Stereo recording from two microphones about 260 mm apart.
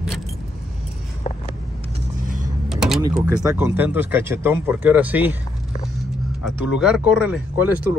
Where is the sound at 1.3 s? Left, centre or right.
Left.